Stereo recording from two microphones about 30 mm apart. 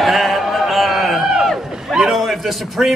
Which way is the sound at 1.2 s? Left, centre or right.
Right.